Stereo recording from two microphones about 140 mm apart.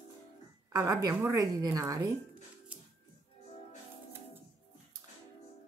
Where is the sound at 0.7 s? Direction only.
25° right (ahead or behind).